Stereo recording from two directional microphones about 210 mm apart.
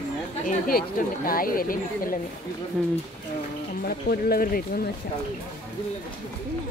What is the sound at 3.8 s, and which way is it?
Speech, 45° left (ahead or behind).